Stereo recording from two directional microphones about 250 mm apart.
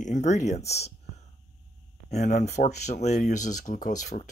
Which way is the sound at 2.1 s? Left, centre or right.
Left.